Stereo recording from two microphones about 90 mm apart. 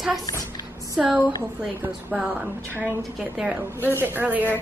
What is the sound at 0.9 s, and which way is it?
A woman's voice, 15° right (ahead or behind).